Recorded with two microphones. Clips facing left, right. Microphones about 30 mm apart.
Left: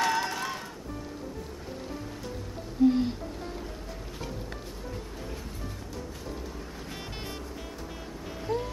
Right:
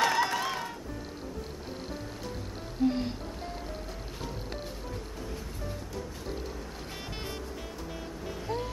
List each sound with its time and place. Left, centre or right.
0.0 s music: centre
2.9 s music: centre
8.5 s music: centre